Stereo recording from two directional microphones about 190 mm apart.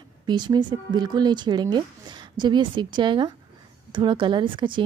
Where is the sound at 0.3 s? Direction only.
25° right (ahead or behind).